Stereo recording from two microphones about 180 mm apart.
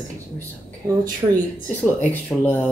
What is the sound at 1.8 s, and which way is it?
Speech, 10° left (ahead or behind).